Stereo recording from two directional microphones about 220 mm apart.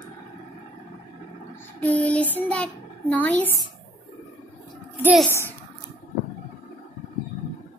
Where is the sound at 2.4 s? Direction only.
5° left (ahead or behind).